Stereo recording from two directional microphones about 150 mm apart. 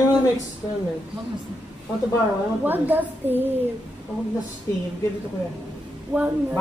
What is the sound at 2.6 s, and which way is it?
Speech, 10° right (ahead or behind).